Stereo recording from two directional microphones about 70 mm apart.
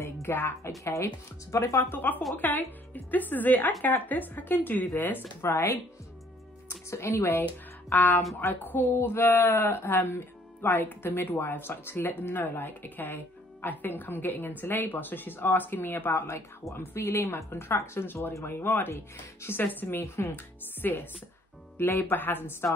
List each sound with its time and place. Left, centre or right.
0.0 s music: left
0.8 s speech: left
1.9 s speech: left
5.4 s speech: left
6.9 s speech: left